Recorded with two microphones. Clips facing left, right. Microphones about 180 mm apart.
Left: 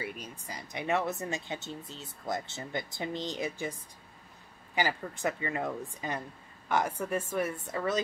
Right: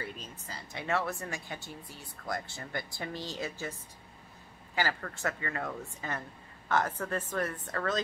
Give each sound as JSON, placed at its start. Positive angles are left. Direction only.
{"t": 0.0, "sound": "speech", "side_deg": 10}
{"t": 4.7, "sound": "a woman's voice", "side_deg": 15}